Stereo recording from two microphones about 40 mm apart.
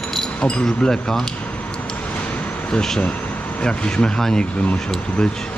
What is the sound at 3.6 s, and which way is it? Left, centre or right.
Speech, left.